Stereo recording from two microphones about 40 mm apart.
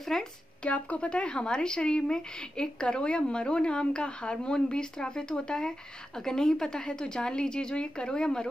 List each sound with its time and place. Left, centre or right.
0.1 s speech: centre
0.7 s speech: left